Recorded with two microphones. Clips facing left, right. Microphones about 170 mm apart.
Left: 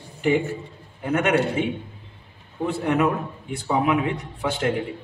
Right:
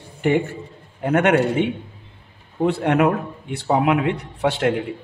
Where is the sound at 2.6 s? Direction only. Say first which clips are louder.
Right 4 dB; 65° right (ahead or behind).